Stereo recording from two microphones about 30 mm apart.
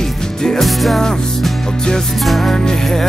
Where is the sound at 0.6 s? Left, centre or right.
Centre.